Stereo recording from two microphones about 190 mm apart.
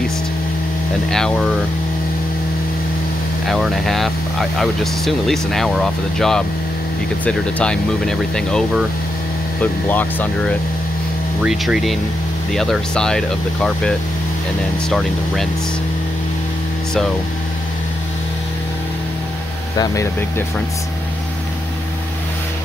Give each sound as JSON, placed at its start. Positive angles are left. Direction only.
{"t": 3.4, "sound": "speech", "side_deg": 0}
{"t": 11.4, "sound": "speech", "side_deg": 0}
{"t": 19.8, "sound": "speech", "side_deg": 15}